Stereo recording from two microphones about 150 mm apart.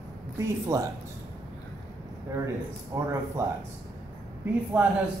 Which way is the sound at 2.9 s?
20° right (ahead or behind).